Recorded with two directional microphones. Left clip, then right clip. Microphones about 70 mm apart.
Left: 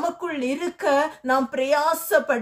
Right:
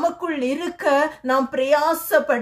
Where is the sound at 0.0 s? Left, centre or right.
Left.